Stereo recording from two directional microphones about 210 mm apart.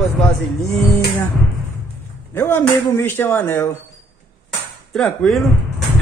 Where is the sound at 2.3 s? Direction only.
10° left (ahead or behind).